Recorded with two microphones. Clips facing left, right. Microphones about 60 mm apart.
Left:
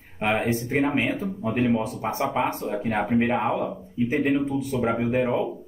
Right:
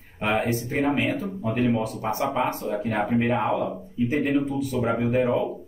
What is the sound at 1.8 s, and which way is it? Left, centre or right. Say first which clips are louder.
Speech: even; left.